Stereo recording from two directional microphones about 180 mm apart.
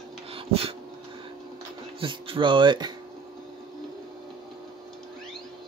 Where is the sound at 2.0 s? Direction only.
30° right (ahead or behind).